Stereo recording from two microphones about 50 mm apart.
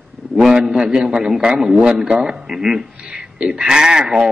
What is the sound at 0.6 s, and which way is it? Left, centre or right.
A man's voice, centre.